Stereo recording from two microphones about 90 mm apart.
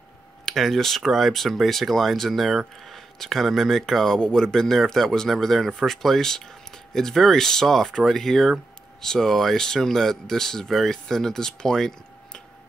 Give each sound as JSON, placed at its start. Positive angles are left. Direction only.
{"t": 0.5, "sound": "speech", "side_deg": 0}